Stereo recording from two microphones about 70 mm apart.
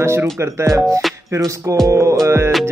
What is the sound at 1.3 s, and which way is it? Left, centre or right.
Speech, right.